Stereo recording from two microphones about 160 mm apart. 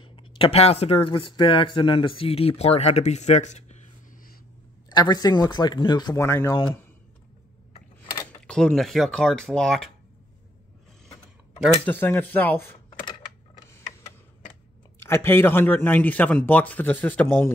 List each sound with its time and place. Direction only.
0.0 s speech: 35° left (ahead or behind)
4.8 s speech: 25° left (ahead or behind)
6.2 s a man's voice: 15° left (ahead or behind)
8.3 s speech: 5° left (ahead or behind)
11.8 s a man's voice: 10° left (ahead or behind)
12.9 s a sound: 30° left (ahead or behind)
13.7 s a sound: 15° left (ahead or behind)
15.0 s a man's voice: 15° left (ahead or behind)